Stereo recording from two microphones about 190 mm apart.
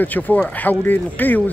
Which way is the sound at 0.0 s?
10° left (ahead or behind).